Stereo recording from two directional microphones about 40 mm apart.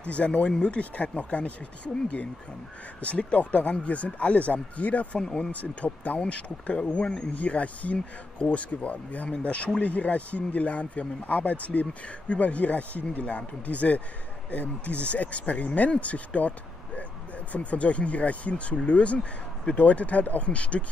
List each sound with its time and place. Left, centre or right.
0.0 s a man's voice: left
3.0 s a man's voice: left